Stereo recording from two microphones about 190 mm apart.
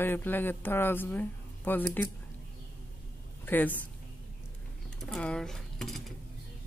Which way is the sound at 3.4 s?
10° left (ahead or behind).